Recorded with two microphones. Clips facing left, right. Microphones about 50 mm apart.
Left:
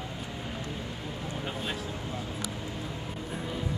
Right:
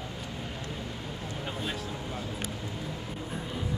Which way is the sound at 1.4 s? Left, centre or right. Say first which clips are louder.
Even; centre.